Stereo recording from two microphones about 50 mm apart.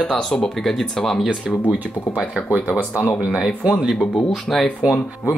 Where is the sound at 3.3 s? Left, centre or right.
Centre.